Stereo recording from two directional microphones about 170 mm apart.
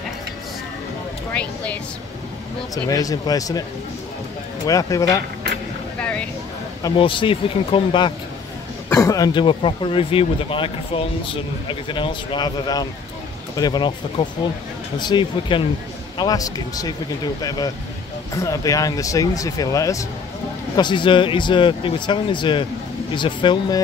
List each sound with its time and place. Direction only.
1.3 s speech: 10° left (ahead or behind)
2.7 s speech: 20° left (ahead or behind)
4.6 s speech: 20° left (ahead or behind)
5.9 s a sound: 5° left (ahead or behind)
6.8 s speech: 30° left (ahead or behind)